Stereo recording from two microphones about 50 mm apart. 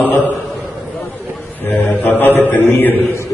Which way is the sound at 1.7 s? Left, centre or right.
Left.